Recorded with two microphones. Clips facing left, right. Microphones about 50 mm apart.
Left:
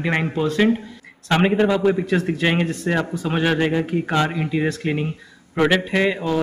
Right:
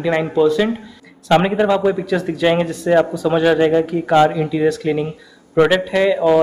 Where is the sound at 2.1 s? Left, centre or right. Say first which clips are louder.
Right 4 dB; left.